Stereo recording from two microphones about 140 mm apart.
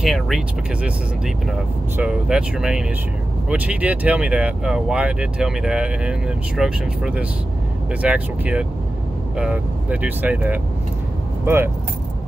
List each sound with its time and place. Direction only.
0.0 s speech: centre (ahead or behind)
2.0 s speech: 5° right (ahead or behind)